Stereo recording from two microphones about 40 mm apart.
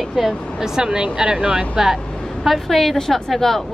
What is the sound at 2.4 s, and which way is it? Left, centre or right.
A woman's voice, centre.